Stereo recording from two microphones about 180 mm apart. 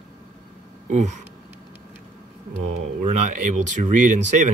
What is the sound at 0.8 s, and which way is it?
Speech, 40° right (ahead or behind).